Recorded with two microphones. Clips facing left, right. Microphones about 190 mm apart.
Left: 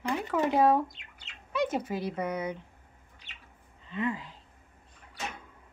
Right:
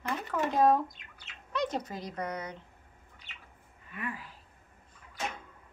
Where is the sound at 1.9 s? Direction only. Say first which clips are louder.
Left 5 dB; 5° left (ahead or behind).